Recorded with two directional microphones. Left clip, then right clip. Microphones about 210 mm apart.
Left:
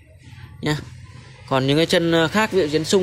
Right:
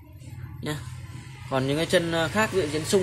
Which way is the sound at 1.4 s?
40° left (ahead or behind).